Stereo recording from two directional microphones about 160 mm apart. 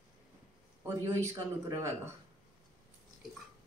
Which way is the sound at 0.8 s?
15° right (ahead or behind).